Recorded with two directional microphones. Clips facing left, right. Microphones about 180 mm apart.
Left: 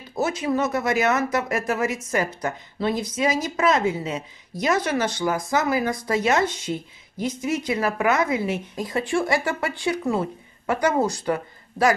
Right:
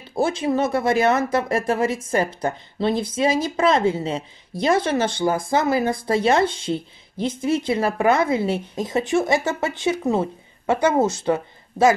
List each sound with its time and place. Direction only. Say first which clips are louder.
0.1 s speech: right 3 dB; 30° right (ahead or behind)